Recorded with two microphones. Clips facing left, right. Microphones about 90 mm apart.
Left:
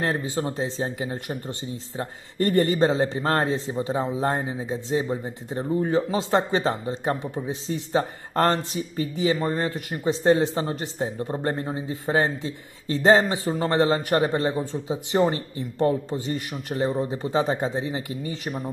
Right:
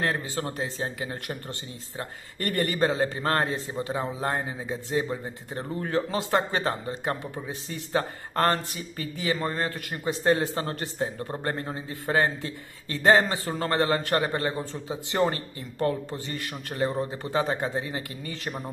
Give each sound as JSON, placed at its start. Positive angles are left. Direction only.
{"t": 0.0, "sound": "speech", "side_deg": 20}